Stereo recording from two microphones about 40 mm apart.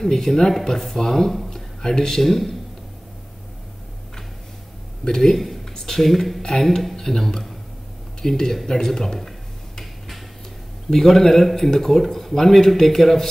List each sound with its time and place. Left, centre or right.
0.0 s speech: centre
1.5 s a sound: centre
2.2 s speech: centre
5.0 s speech: centre
7.0 s speech: centre
10.9 s speech: centre